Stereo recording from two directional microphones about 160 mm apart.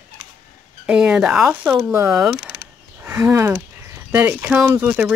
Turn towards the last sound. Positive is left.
turn(degrees=-10)  # may be behind; listen again after turning